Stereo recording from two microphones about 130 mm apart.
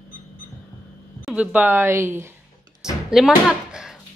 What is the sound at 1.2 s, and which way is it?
Speech, 10° right (ahead or behind).